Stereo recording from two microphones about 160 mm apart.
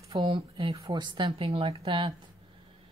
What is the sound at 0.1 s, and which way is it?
Speech, 30° right (ahead or behind).